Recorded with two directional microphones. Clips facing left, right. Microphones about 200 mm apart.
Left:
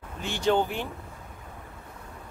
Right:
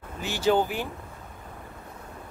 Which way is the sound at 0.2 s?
5° right (ahead or behind).